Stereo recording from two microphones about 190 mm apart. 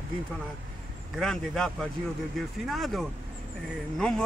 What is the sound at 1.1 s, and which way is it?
Speech, centre (ahead or behind).